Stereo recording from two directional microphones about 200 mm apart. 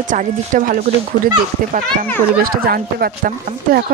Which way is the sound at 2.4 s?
50° right (ahead or behind).